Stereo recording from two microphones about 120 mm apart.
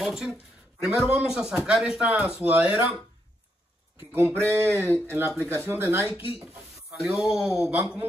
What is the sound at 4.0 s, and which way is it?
Speech, 20° right (ahead or behind).